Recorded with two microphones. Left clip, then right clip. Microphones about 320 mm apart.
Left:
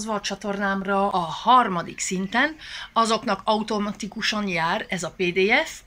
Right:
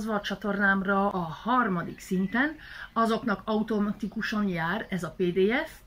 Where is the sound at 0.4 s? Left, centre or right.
Centre.